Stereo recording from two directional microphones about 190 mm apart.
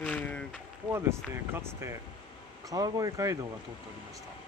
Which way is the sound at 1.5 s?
15° right (ahead or behind).